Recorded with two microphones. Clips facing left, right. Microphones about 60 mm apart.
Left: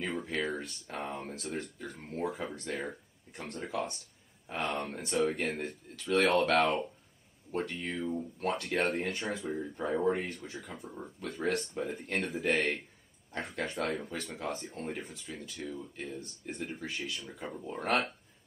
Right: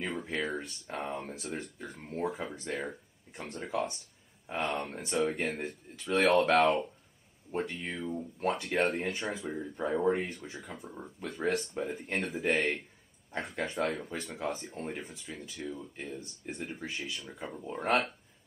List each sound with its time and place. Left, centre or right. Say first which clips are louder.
0.0 s speech: even; centre